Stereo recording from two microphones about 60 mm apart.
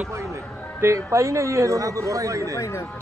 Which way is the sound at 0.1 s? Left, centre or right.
Right.